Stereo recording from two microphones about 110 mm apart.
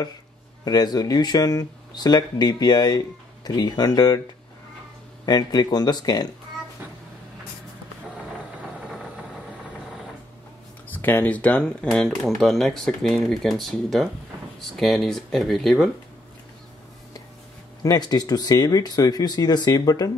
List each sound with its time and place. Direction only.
0.7 s speech: 40° left (ahead or behind)
5.2 s speech: 40° left (ahead or behind)
8.8 s vehicle: 5° right (ahead or behind)
10.9 s speech: 15° left (ahead or behind); by 15.9 s centre (ahead or behind)
17.8 s speech: 40° left (ahead or behind)